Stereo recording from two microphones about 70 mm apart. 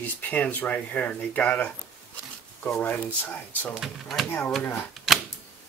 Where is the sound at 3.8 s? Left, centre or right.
Centre.